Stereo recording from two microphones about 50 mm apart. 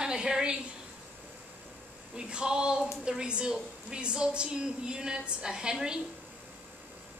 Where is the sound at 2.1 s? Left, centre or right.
Centre.